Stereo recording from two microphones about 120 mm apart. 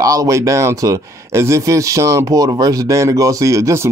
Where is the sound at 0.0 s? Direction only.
30° right (ahead or behind).